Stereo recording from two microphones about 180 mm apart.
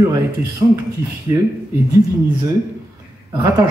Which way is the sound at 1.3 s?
15° right (ahead or behind).